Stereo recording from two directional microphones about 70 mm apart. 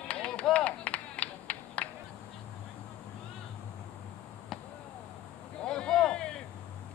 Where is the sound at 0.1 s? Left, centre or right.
Centre.